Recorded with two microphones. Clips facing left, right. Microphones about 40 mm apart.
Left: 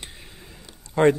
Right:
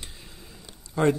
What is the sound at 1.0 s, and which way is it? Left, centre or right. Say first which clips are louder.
Speech: left 5 dB; left.